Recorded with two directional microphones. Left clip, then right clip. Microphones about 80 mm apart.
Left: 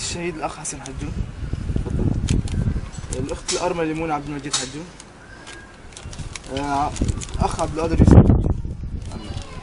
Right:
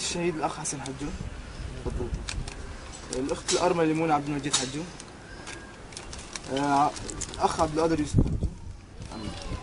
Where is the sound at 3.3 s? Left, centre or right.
Centre.